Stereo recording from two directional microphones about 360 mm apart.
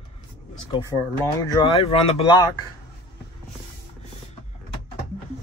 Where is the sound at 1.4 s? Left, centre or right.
Centre.